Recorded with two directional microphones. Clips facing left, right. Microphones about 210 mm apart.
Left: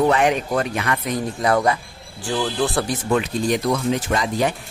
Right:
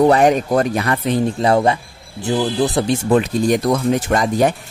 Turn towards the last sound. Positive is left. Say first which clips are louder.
# right 5 dB
turn(degrees=-45)  # may be behind; listen again after turning